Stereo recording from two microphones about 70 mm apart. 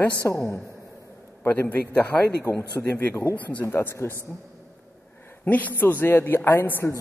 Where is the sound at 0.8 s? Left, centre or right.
Left.